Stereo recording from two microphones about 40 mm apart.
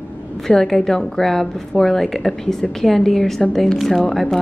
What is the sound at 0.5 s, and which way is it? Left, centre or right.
A woman's voice, centre.